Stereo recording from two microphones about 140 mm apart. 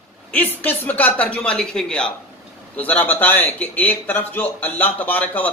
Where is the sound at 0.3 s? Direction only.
10° left (ahead or behind).